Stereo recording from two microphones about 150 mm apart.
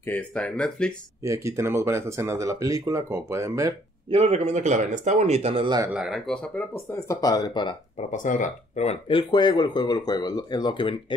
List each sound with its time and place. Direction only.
0.0 s speech: 10° left (ahead or behind)
1.2 s speech: 20° right (ahead or behind)
4.1 s speech: 45° right (ahead or behind)
5.9 s speech: centre (ahead or behind)
6.7 s speech: 15° left (ahead or behind)
8.1 s speech: 60° left (ahead or behind)
9.0 s speech: 30° left (ahead or behind)